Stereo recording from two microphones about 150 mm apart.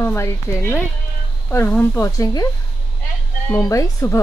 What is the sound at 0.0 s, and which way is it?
Speech, 20° left (ahead or behind).